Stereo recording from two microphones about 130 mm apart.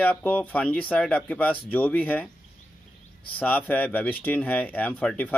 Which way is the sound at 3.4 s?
10° left (ahead or behind).